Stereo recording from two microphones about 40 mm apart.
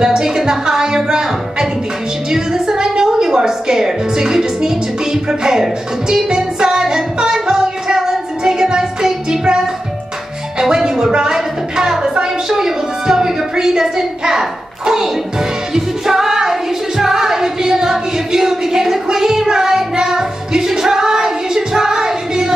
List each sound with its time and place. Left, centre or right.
0.0 s a woman's voice: centre
2.3 s music: centre
10.6 s a sound: centre
15.7 s music: centre